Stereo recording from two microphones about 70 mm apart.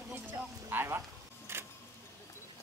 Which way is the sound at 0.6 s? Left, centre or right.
Right.